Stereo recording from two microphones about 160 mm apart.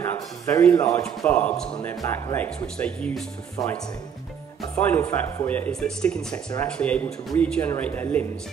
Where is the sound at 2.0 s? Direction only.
20° left (ahead or behind).